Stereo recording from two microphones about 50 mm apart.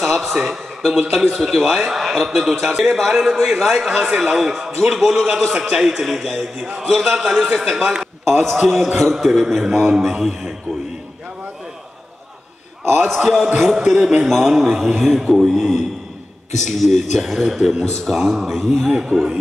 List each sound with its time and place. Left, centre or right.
0.0 s a man's voice: centre
7.1 s a man's voice: centre
7.8 s a man's voice: centre
8.3 s a man's voice: centre
13.1 s a man's voice: centre
13.9 s a man's voice: centre
14.2 s a man's voice: centre